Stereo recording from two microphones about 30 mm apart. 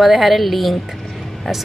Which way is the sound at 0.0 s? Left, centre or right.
Centre.